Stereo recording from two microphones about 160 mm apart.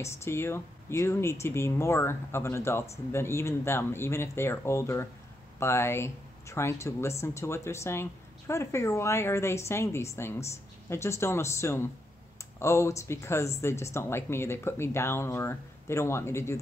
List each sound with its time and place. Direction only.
0.0 s speech: 15° left (ahead or behind)